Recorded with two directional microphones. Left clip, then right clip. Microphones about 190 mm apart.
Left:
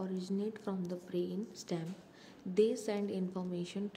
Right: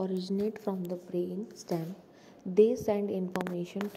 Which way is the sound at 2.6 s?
10° right (ahead or behind).